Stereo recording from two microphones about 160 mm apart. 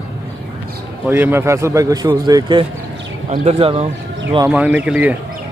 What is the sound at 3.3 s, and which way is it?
Speech, 40° right (ahead or behind).